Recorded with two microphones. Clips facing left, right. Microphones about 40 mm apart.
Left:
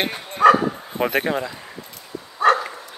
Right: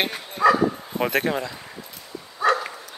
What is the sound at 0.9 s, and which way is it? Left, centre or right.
Speech, centre.